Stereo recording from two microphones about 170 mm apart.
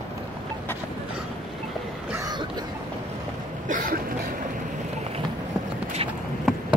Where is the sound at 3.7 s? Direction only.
55° right (ahead or behind).